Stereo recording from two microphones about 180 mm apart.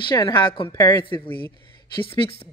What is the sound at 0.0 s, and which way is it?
Speech, 25° left (ahead or behind).